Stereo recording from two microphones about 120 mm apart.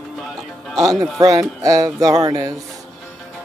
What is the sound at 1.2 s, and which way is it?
Music, 30° right (ahead or behind).